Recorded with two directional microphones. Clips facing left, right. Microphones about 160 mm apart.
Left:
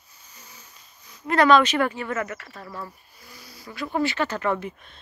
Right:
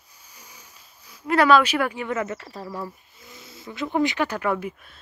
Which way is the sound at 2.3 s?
30° right (ahead or behind).